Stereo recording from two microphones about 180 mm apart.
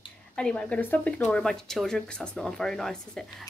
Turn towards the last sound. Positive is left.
turn(degrees=0)  # may be behind; listen again after turning